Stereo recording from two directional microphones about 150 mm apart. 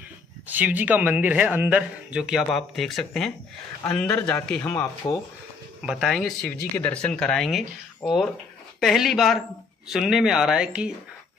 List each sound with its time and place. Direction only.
0.5 s speech: 10° right (ahead or behind); by 4.8 s 10° left (ahead or behind)
5.0 s speech: 25° left (ahead or behind)
5.8 s speech: 5° right (ahead or behind)